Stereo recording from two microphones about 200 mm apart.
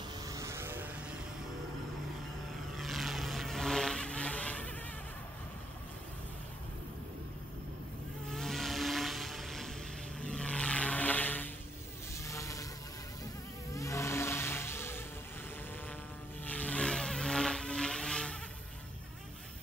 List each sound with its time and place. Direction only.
0.2 s vehicle: 15° right (ahead or behind)
2.8 s vehicle: centre (ahead or behind)
8.3 s vehicle: centre (ahead or behind)
12.2 s a sound: 15° left (ahead or behind)
13.7 s music: 15° left (ahead or behind)
16.4 s vehicle: 5° left (ahead or behind)